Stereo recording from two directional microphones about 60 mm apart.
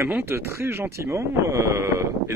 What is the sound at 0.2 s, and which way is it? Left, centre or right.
Speech, right.